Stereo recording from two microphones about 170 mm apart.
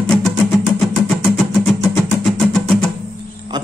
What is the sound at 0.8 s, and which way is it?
Music, 5° left (ahead or behind).